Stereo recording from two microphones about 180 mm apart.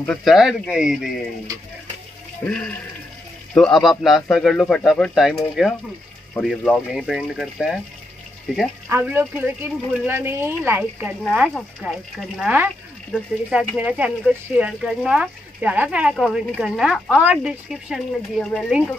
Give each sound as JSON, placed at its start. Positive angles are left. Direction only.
{"t": 0.0, "sound": "speech", "side_deg": 5}
{"t": 2.4, "sound": "speech", "side_deg": 5}